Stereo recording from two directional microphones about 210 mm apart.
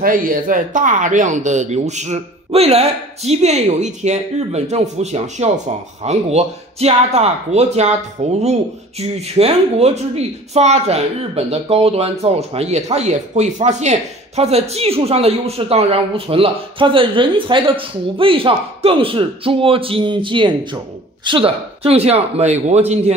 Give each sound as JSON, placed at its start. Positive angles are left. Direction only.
{"t": 0.0, "sound": "speech", "side_deg": -40}